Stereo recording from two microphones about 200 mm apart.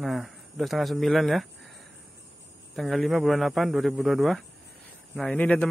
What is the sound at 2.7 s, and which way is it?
Speech, centre (ahead or behind).